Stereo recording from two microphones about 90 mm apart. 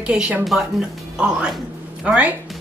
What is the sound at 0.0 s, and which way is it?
A woman's voice, 10° right (ahead or behind).